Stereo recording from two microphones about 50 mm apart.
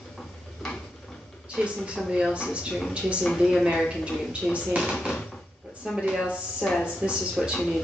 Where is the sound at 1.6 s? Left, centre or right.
Right.